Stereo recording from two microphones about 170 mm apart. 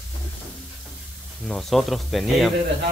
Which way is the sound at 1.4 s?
Centre (ahead or behind).